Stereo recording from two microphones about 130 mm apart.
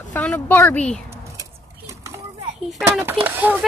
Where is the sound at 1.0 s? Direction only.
25° right (ahead or behind).